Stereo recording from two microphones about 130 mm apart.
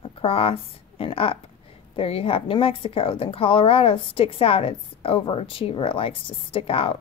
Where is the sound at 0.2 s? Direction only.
45° left (ahead or behind).